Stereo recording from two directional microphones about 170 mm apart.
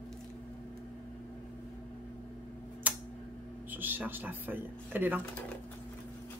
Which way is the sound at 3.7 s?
10° right (ahead or behind).